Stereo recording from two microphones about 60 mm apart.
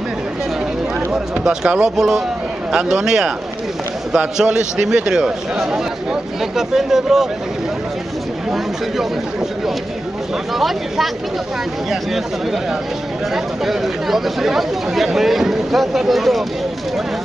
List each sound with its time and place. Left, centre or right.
1.1 s a man's voice: centre
10.5 s speech: centre
13.3 s speech: centre